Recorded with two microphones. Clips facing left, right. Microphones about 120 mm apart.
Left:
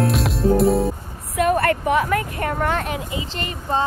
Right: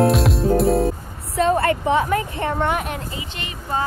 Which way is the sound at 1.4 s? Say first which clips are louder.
Even; 25° right (ahead or behind).